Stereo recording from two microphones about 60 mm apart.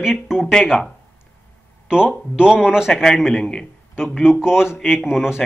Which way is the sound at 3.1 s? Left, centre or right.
Centre.